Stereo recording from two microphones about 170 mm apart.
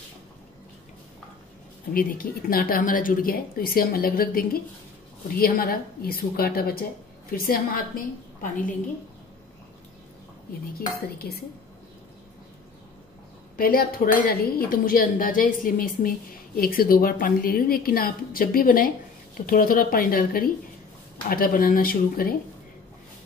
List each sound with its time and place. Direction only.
1.9 s speech: 60° left (ahead or behind)
11.1 s speech: 65° left (ahead or behind)
13.6 s speech: 60° left (ahead or behind)